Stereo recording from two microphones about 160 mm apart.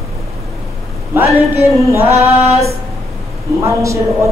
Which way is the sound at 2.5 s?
40° right (ahead or behind).